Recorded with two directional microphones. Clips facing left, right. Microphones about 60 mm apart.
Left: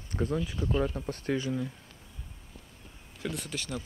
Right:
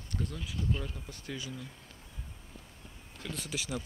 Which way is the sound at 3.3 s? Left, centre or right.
Centre.